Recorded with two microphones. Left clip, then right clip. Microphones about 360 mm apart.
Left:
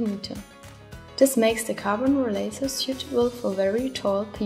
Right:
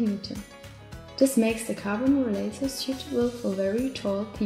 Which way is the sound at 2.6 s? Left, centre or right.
Left.